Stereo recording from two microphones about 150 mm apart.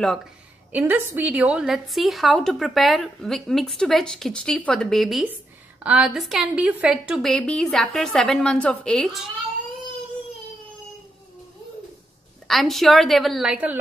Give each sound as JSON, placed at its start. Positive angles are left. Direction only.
{"t": 0.7, "sound": "a woman's voice", "side_deg": -10}
{"t": 12.4, "sound": "a woman's voice", "side_deg": 0}